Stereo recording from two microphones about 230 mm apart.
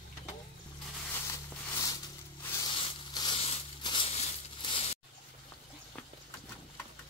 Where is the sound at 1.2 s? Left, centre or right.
Centre.